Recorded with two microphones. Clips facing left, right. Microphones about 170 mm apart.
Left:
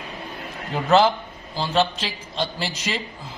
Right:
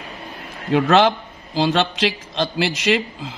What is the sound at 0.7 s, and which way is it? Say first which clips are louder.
A man's voice: right 3 dB; 90° right.